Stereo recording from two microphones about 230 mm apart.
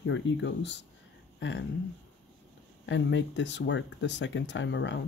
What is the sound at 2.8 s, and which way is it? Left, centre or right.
Speech, left.